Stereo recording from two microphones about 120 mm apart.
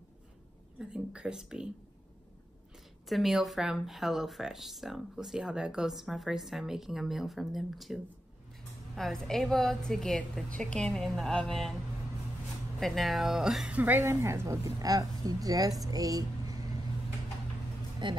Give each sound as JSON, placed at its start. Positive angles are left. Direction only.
{"t": 0.7, "sound": "a woman's voice", "side_deg": -5}
{"t": 3.1, "sound": "speech", "side_deg": 0}
{"t": 12.8, "sound": "speech", "side_deg": 0}
{"t": 13.7, "sound": "a woman's voice", "side_deg": -15}
{"t": 18.0, "sound": "speech", "side_deg": -40}